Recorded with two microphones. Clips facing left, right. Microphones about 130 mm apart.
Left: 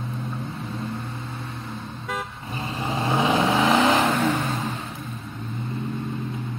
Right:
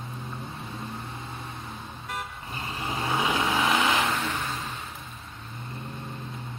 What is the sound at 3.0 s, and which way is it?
Vehicle, 25° left (ahead or behind).